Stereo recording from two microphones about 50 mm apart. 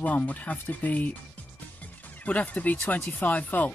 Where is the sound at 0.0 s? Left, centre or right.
Left.